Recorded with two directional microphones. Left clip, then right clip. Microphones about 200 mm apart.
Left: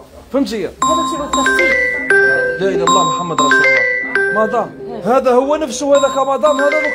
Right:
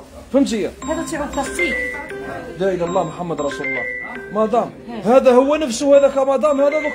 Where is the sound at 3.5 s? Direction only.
55° left (ahead or behind).